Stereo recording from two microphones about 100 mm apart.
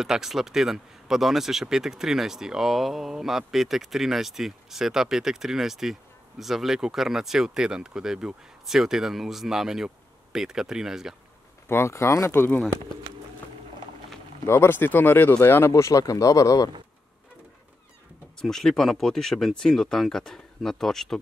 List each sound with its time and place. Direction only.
0.0 s speech: 5° right (ahead or behind)
11.7 s speech: 25° left (ahead or behind)
14.4 s speech: 25° left (ahead or behind)
15.7 s speech: 35° left (ahead or behind)
18.4 s speech: 5° left (ahead or behind)